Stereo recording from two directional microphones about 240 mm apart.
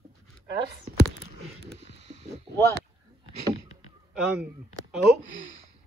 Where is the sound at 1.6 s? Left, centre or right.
Right.